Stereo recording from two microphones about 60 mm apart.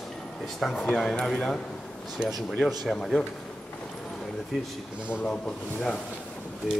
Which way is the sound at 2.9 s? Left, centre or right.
Centre.